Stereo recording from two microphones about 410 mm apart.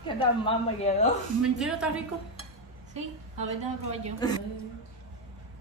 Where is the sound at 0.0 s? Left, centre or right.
Centre.